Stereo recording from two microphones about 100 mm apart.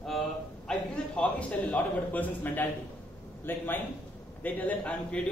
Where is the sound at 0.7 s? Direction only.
10° left (ahead or behind).